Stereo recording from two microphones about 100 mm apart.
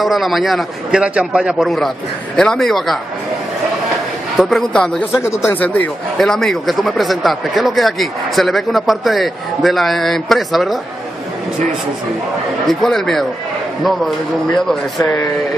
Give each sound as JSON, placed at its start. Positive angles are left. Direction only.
{"t": 0.0, "sound": "a man's voice", "side_deg": 0}
{"t": 4.4, "sound": "speech", "side_deg": 0}
{"t": 5.2, "sound": "speech", "side_deg": 25}
{"t": 6.1, "sound": "speech", "side_deg": 5}
{"t": 12.6, "sound": "speech", "side_deg": 5}